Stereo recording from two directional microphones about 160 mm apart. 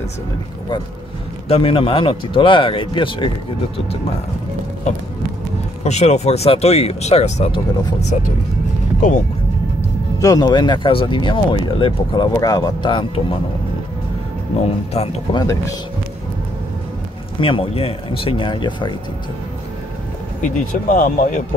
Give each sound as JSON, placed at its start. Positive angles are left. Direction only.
{"t": 1.5, "sound": "speech", "side_deg": 35}
{"t": 5.9, "sound": "speech", "side_deg": 45}
{"t": 10.2, "sound": "speech", "side_deg": 25}
{"t": 14.5, "sound": "speech", "side_deg": 40}
{"t": 15.3, "sound": "speech", "side_deg": 20}
{"t": 17.4, "sound": "speech", "side_deg": 35}
{"t": 20.4, "sound": "speech", "side_deg": 55}